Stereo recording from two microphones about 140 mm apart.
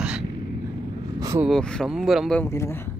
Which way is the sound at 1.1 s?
25° right (ahead or behind).